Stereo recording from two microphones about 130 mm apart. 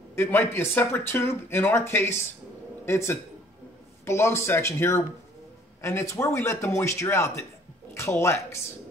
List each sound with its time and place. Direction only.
0.1 s a man's voice: 15° left (ahead or behind)